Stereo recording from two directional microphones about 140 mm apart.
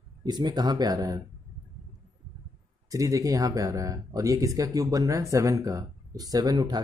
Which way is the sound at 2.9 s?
25° right (ahead or behind).